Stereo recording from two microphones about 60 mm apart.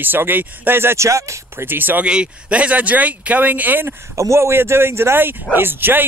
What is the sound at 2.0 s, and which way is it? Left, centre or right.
Speech, centre.